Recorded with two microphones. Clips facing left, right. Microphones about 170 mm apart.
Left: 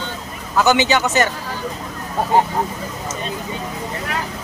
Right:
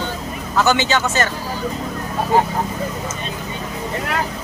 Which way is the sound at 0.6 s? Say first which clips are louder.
Left 2 dB; 15° left (ahead or behind).